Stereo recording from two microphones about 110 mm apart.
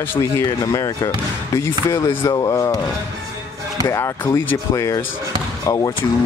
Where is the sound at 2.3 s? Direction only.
35° left (ahead or behind).